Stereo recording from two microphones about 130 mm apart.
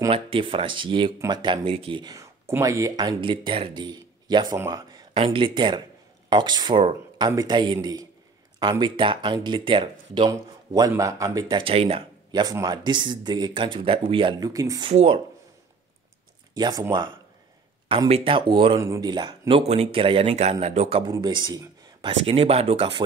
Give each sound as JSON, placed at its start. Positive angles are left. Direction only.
{"t": 0.1, "sound": "speech", "side_deg": -45}
{"t": 2.1, "sound": "speech", "side_deg": -20}
{"t": 11.4, "sound": "speech", "side_deg": -40}
{"t": 12.3, "sound": "speech", "side_deg": -30}
{"t": 14.9, "sound": "speech", "side_deg": -50}
{"t": 16.5, "sound": "speech", "side_deg": -35}
{"t": 17.8, "sound": "speech", "side_deg": -50}
{"t": 18.8, "sound": "speech", "side_deg": -20}
{"t": 19.0, "sound": "speech", "side_deg": -35}
{"t": 19.7, "sound": "speech", "side_deg": -50}
{"t": 21.1, "sound": "speech", "side_deg": -35}
{"t": 22.0, "sound": "speech", "side_deg": -45}